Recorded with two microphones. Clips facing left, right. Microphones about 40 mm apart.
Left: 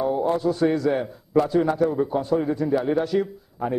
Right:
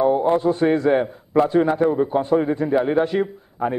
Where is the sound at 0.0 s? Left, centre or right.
Right.